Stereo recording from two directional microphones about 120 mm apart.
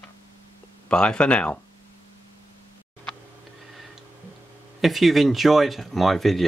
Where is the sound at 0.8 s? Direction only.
10° left (ahead or behind).